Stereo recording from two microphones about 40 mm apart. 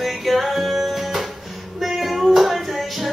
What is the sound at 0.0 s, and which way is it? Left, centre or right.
Music, centre.